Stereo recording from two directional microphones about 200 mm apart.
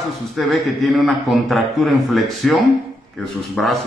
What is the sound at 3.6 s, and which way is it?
Speech, centre (ahead or behind).